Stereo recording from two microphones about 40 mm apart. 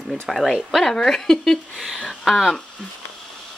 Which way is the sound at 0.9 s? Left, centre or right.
Centre.